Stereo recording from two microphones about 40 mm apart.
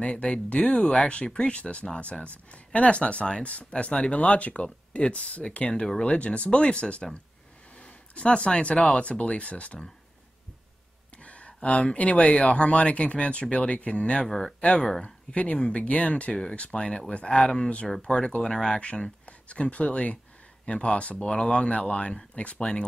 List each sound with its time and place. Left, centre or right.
0.0 s speech: left
5.7 s speech: left
11.2 s speech: left; by 18.8 s centre
18.8 s speech: left